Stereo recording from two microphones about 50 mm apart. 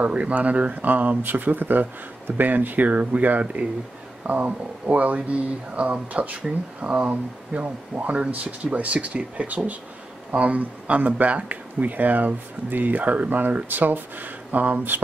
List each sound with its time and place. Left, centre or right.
0.0 s speech: right